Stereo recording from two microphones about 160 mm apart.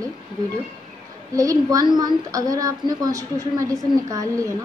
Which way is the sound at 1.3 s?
20° right (ahead or behind).